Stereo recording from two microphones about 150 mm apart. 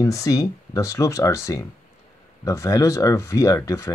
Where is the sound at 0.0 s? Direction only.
20° left (ahead or behind).